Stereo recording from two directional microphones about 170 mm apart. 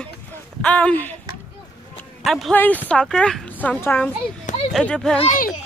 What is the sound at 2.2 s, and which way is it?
Speech, centre (ahead or behind).